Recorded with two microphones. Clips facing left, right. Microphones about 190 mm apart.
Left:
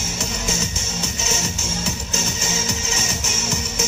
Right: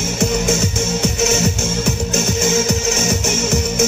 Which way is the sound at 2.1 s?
55° right (ahead or behind).